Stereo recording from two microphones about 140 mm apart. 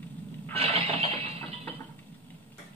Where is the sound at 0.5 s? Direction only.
45° right (ahead or behind).